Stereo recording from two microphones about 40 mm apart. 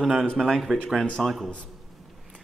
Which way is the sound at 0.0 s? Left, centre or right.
Centre.